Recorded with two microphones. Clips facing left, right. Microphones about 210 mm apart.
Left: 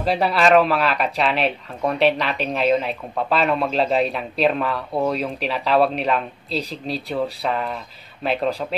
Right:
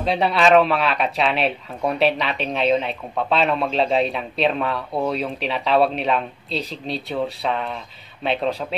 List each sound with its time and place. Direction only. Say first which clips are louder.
0.0 s speech: even; centre (ahead or behind)